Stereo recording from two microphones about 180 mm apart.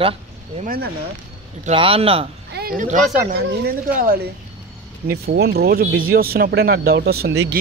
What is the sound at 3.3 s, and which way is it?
Speech, 60° right (ahead or behind).